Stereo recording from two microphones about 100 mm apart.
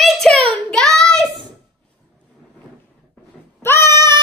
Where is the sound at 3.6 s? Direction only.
25° left (ahead or behind).